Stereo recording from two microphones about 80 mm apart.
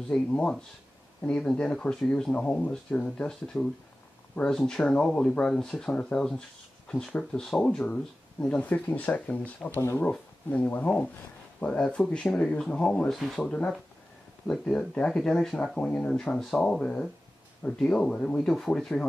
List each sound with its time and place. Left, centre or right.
0.1 s speech: centre
9.8 s speech: left
10.7 s speech: centre
13.5 s speech: centre